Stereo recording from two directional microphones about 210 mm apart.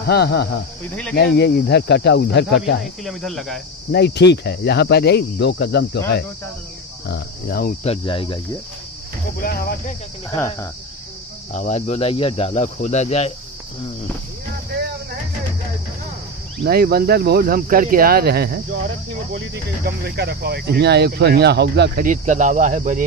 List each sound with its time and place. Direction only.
0.0 s speech: 50° left (ahead or behind)
2.8 s speech: centre (ahead or behind)
3.9 s speech: 55° left (ahead or behind)
7.8 s speech: 25° left (ahead or behind)
9.4 s speech: 45° left (ahead or behind)
10.3 s speech: 15° left (ahead or behind)
11.5 s speech: 35° left (ahead or behind)
16.6 s speech: 45° right (ahead or behind)